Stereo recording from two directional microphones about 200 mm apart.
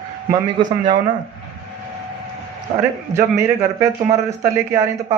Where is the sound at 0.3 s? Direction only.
20° right (ahead or behind).